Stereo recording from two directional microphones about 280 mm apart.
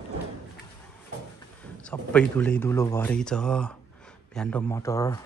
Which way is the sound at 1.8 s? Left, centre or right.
Centre.